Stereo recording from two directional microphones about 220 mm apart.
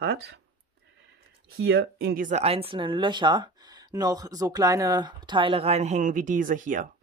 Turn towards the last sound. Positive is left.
turn(degrees=-35)  # may be behind; listen again after turning